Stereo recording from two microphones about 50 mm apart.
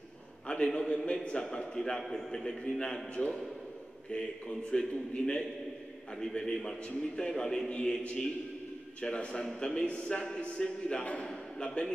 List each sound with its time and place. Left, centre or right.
0.5 s a man's voice: centre
3.2 s a man's voice: left